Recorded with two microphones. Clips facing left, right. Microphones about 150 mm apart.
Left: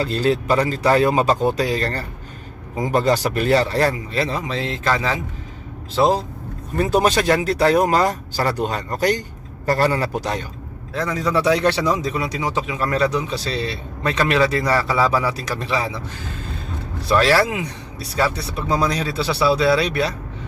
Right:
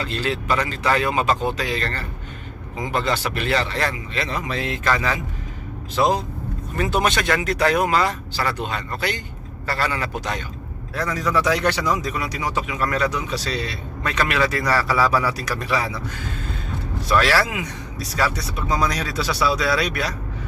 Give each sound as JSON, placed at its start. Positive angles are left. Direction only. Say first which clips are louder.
{"t": 0.0, "sound": "speech", "louder": "left 6 dB", "side_deg": 35}
{"t": 11.0, "sound": "a man's voice", "louder": "left 2 dB", "side_deg": 25}
{"t": 17.1, "sound": "a man's voice", "louder": "left 3 dB", "side_deg": 30}